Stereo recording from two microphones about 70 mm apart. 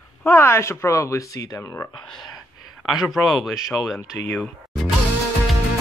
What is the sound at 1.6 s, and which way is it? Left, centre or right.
Speech, left.